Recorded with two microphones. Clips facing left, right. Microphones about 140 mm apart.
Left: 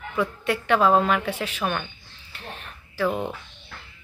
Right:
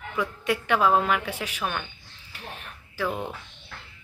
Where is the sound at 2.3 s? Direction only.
10° right (ahead or behind).